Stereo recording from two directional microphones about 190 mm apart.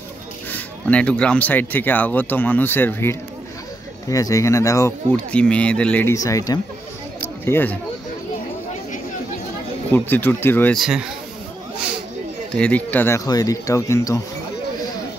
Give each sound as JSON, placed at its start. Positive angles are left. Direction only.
{"t": 0.5, "sound": "speech", "side_deg": 5}
{"t": 9.9, "sound": "speech", "side_deg": 10}
{"t": 10.8, "sound": "a man's voice", "side_deg": -5}
{"t": 12.5, "sound": "speech", "side_deg": 5}